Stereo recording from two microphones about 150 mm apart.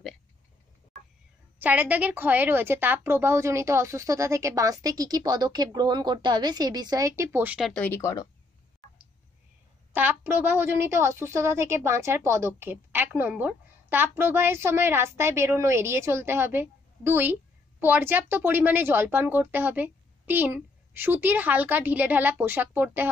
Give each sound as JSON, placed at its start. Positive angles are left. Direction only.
{"t": 1.6, "sound": "a woman's voice", "side_deg": -10}
{"t": 7.6, "sound": "speech", "side_deg": 10}
{"t": 8.0, "sound": "speech", "side_deg": 25}
{"t": 9.9, "sound": "a woman's voice", "side_deg": -15}